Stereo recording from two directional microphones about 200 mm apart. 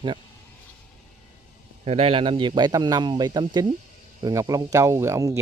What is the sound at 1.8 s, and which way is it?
Speech, 30° right (ahead or behind).